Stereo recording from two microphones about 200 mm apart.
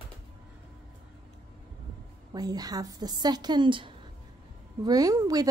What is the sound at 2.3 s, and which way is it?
A woman's voice, 20° right (ahead or behind).